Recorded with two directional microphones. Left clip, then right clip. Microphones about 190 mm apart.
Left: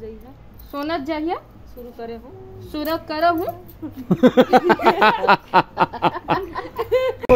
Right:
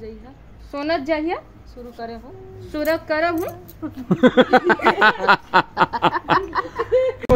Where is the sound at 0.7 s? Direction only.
5° left (ahead or behind).